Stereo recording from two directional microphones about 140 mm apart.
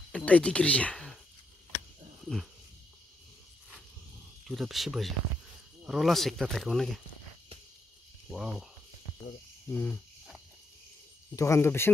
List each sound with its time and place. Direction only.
0.1 s speech: 10° left (ahead or behind)
4.5 s speech: centre (ahead or behind)
8.3 s speech: 5° right (ahead or behind)
9.7 s speech: 10° left (ahead or behind)
11.3 s speech: 20° left (ahead or behind)